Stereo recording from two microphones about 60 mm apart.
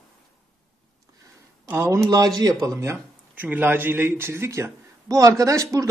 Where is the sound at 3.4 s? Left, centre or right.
Right.